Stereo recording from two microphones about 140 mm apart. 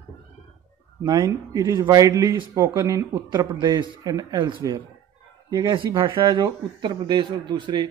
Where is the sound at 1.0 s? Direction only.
25° right (ahead or behind).